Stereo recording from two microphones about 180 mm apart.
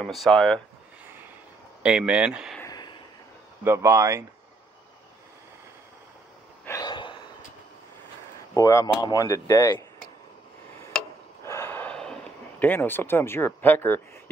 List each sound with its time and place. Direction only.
0.0 s speech: centre (ahead or behind)
1.8 s speech: 5° right (ahead or behind)
2.6 s a sound: 20° left (ahead or behind)
3.6 s speech: 15° right (ahead or behind)
6.6 s gasp: 20° left (ahead or behind)
8.5 s speech: 15° left (ahead or behind)
11.4 s gasp: 15° left (ahead or behind)